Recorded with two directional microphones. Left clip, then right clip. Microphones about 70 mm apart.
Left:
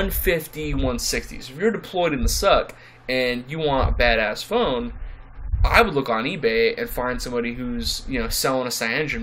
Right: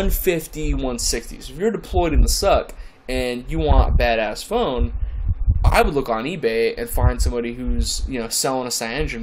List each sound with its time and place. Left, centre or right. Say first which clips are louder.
0.0 s speech: right 1 dB; right